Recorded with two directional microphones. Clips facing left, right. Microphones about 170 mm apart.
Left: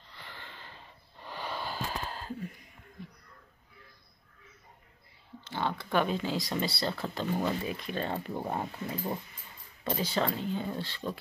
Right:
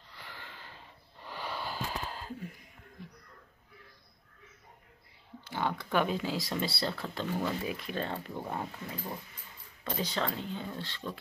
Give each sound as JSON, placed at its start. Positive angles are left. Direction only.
{"t": 0.1, "sound": "gasp", "side_deg": -10}
{"t": 1.2, "sound": "a sound", "side_deg": -10}
{"t": 5.5, "sound": "a sound", "side_deg": -10}
{"t": 5.9, "sound": "speech", "side_deg": -10}
{"t": 7.2, "sound": "speech", "side_deg": 20}
{"t": 7.6, "sound": "speech", "side_deg": -5}
{"t": 8.1, "sound": "speech", "side_deg": 25}
{"t": 9.8, "sound": "speech", "side_deg": 5}